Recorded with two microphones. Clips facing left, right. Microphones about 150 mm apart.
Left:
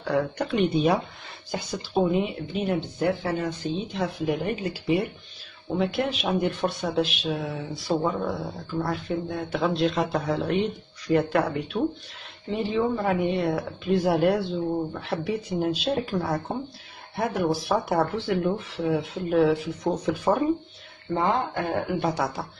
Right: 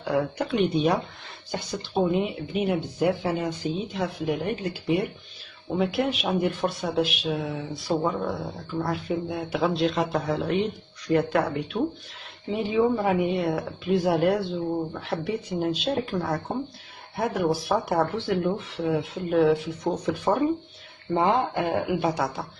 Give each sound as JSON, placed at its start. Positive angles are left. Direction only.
{"t": 0.0, "sound": "speech", "side_deg": -10}
{"t": 0.5, "sound": "speech", "side_deg": 0}
{"t": 3.9, "sound": "speech", "side_deg": 0}
{"t": 21.1, "sound": "speech", "side_deg": -15}
{"t": 22.0, "sound": "speech", "side_deg": 0}